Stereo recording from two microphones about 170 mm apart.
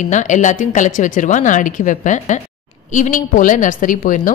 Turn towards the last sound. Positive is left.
turn(degrees=50)  # may be behind; listen again after turning